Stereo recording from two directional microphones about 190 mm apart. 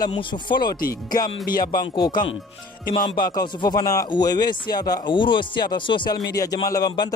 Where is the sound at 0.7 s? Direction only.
50° left (ahead or behind).